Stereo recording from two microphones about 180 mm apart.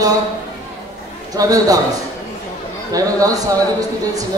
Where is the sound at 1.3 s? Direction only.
20° right (ahead or behind).